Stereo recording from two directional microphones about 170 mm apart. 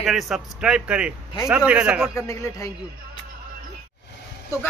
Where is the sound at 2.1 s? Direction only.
15° left (ahead or behind).